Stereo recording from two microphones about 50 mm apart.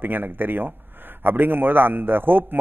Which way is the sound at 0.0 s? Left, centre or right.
Right.